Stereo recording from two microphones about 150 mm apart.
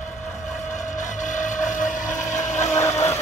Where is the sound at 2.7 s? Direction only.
20° left (ahead or behind).